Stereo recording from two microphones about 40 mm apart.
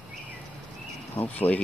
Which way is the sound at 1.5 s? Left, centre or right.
Left.